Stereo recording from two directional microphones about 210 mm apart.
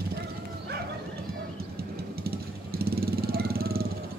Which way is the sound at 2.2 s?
45° right (ahead or behind).